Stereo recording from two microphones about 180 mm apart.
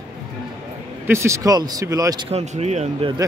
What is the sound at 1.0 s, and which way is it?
Speech, 15° right (ahead or behind).